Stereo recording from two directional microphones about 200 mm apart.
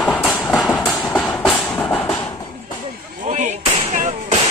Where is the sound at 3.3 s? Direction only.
35° right (ahead or behind).